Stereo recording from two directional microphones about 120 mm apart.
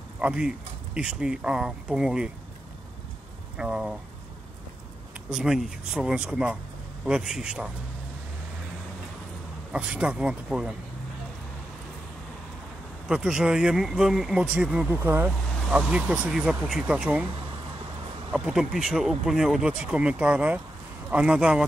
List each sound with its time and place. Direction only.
0.2 s speech: 5° right (ahead or behind)
3.5 s speech: 5° right (ahead or behind)
5.3 s speech: 5° right (ahead or behind)
9.7 s speech: 5° right (ahead or behind)
13.1 s speech: 5° right (ahead or behind)
15.0 s speech: 20° right (ahead or behind)
15.7 s speech: 10° right (ahead or behind)
18.3 s speech: 5° right (ahead or behind)